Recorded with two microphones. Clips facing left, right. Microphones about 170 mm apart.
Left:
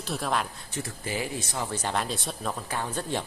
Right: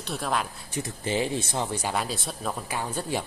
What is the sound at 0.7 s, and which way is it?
Speech, 20° right (ahead or behind).